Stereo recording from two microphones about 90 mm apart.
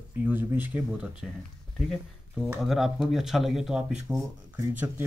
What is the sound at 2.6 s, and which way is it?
Speech, 5° right (ahead or behind).